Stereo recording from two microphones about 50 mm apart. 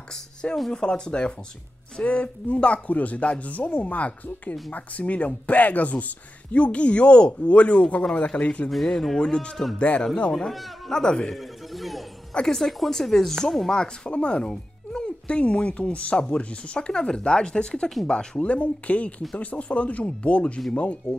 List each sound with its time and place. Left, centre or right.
0.1 s speech: centre
8.6 s speech: centre
9.2 s speech: centre
10.3 s speech: centre
11.3 s speech: centre
13.7 s speech: left